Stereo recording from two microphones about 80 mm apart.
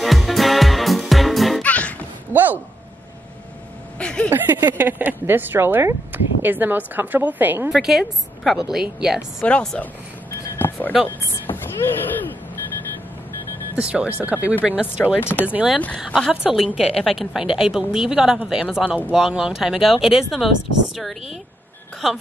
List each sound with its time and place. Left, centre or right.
0.0 s music: centre
1.6 s music: centre
2.3 s a sound: right
4.0 s a sound: centre
4.3 s speech: right
7.7 s speech: centre
9.4 s speech: centre
10.6 s speech: left
13.7 s speech: centre
15.1 s speech: left
15.4 s speech: centre
16.3 s speech: centre